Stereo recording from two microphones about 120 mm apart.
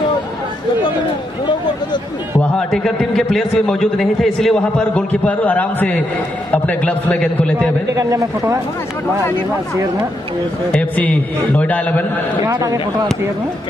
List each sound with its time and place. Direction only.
2.5 s a man's voice: 5° left (ahead or behind)
7.9 s speech: 25° right (ahead or behind)
10.7 s a man's voice: 10° left (ahead or behind)